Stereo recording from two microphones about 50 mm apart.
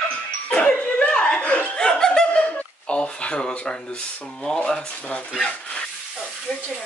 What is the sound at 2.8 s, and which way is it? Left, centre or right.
Speech, left.